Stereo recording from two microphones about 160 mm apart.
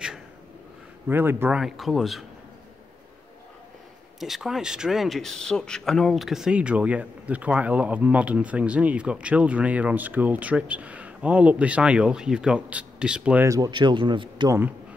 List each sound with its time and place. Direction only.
1.0 s speech: 15° right (ahead or behind)
1.6 s speech: centre (ahead or behind)
4.2 s speech: centre (ahead or behind)
13.5 s speech: 25° right (ahead or behind)